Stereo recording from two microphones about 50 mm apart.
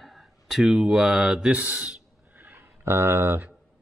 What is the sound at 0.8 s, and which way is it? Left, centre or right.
Speech, centre.